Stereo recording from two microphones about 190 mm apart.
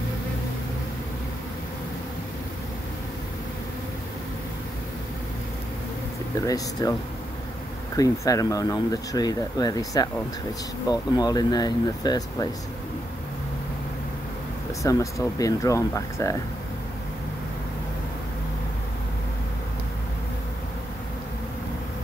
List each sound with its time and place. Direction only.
6.4 s speech: 20° left (ahead or behind)
14.8 s speech: 15° left (ahead or behind)